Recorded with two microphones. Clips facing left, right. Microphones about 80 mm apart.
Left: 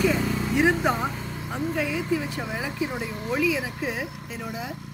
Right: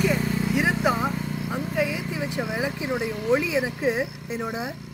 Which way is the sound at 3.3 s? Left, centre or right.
Right.